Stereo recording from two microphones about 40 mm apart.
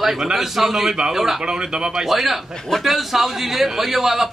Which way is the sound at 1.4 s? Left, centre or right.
Centre.